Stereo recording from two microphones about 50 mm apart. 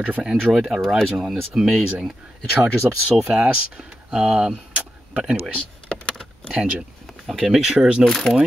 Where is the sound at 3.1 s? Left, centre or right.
Centre.